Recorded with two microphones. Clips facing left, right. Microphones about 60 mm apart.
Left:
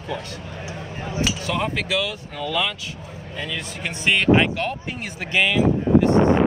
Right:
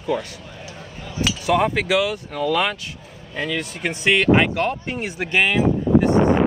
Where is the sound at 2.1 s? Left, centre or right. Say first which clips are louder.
Right 5 dB; right.